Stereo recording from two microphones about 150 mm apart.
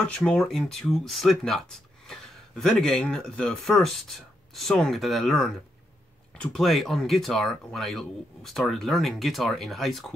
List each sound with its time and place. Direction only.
0.0 s speech: 5° left (ahead or behind)